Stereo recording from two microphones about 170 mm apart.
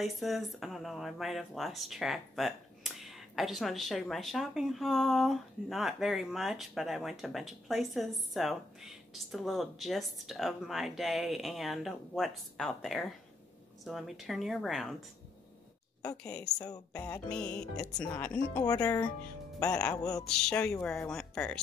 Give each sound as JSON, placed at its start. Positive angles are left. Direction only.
{"t": 0.0, "sound": "speech", "side_deg": 0}
{"t": 16.2, "sound": "speech", "side_deg": 5}
{"t": 16.5, "sound": "speech", "side_deg": 20}
{"t": 17.3, "sound": "speech", "side_deg": 5}
{"t": 18.5, "sound": "speech", "side_deg": 25}
{"t": 20.2, "sound": "speech", "side_deg": 5}